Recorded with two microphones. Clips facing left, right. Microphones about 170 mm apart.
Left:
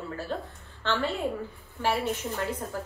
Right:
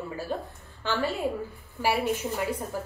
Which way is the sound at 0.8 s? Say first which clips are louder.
Even; 10° right (ahead or behind).